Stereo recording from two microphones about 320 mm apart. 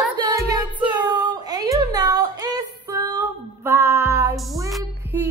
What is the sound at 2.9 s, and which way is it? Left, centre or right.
Child singing, centre.